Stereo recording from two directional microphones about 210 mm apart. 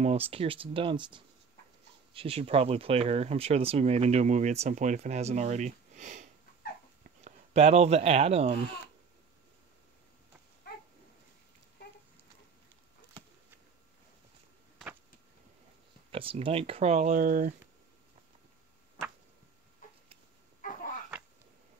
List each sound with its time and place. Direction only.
0.3 s speech: 25° right (ahead or behind)
7.2 s speech: 30° right (ahead or behind)
16.1 s speech: 25° right (ahead or behind)